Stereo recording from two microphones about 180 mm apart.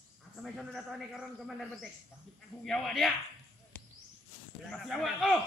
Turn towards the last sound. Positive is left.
turn(degrees=0)  # may be behind; listen again after turning